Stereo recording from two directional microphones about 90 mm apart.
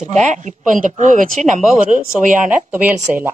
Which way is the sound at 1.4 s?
5° left (ahead or behind).